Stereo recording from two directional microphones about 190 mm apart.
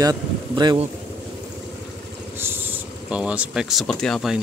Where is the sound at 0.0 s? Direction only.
20° right (ahead or behind).